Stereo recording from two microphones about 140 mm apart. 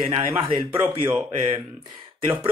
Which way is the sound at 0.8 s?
15° right (ahead or behind).